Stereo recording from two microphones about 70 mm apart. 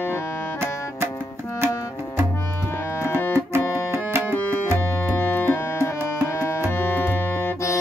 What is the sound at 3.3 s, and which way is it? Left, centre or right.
Music, right.